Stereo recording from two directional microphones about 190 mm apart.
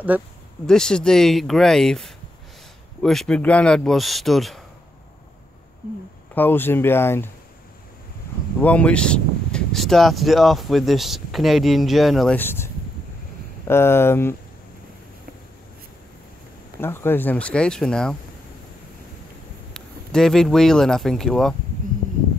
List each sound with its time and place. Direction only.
0.1 s speech: 10° right (ahead or behind)
0.7 s speech: 5° left (ahead or behind)
6.3 s speech: 10° left (ahead or behind)
8.5 s speech: 5° left (ahead or behind)
16.8 s speech: 10° left (ahead or behind)
19.7 s speech: 5° left (ahead or behind)